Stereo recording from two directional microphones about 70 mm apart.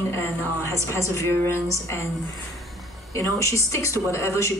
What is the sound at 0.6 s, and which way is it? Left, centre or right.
A woman's voice, left.